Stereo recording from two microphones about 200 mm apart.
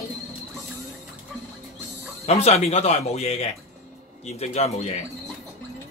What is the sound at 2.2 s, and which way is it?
Speech, 30° left (ahead or behind).